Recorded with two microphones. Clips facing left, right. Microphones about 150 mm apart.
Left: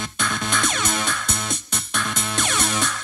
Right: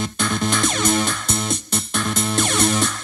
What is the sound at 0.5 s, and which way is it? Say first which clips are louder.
Music: right 5 dB; 40° right (ahead or behind).